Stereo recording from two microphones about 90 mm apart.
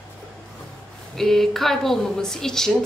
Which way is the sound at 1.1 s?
5° left (ahead or behind).